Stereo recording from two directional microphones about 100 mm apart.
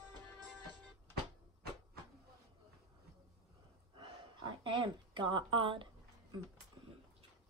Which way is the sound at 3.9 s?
50° right (ahead or behind).